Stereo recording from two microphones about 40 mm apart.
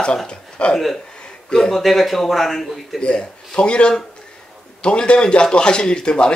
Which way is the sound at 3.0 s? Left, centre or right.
Left.